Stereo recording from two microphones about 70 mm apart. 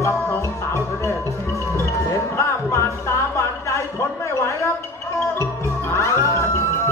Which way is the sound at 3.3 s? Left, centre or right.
Left.